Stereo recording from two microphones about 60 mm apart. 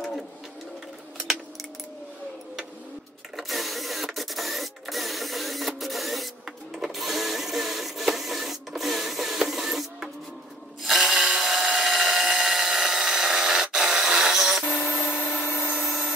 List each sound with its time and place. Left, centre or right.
3.3 s printer: centre
11.2 s wood: centre
14.8 s a sound: left
15.4 s helicopter: left